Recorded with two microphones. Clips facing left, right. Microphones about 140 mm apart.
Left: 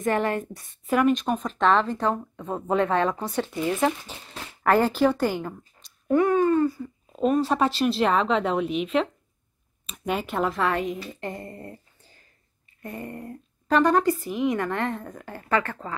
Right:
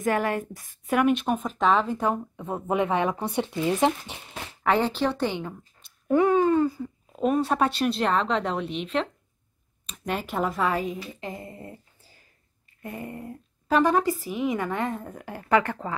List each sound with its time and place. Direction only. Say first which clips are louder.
0.0 s a woman's voice: left 1 dB; centre (ahead or behind); by 4.2 s 20° right (ahead or behind)
4.3 s speech: left 2 dB; 5° left (ahead or behind)
6.0 s a woman's voice: even; 15° right (ahead or behind)